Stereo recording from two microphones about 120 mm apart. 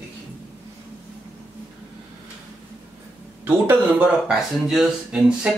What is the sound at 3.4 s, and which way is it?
Speech, 15° right (ahead or behind).